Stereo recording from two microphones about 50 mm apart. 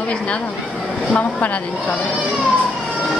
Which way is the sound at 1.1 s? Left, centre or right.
Left.